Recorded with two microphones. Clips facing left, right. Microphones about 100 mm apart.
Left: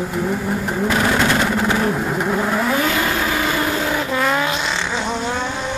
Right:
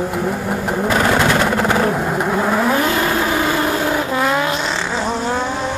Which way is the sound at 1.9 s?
20° right (ahead or behind).